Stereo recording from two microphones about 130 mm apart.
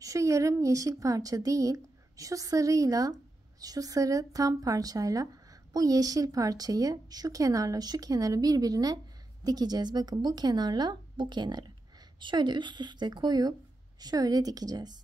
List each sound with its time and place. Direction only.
0.0 s a woman's voice: 25° right (ahead or behind)